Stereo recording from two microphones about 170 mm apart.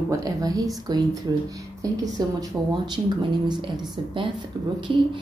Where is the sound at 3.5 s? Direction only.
25° right (ahead or behind).